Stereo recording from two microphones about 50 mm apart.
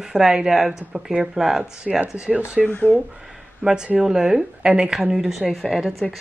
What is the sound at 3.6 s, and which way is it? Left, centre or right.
Speech, centre.